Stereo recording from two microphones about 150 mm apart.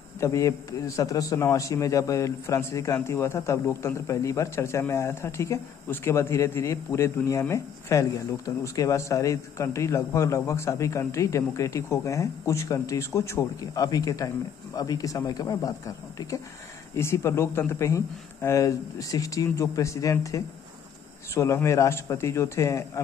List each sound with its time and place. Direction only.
0.2 s a man's voice: 20° left (ahead or behind)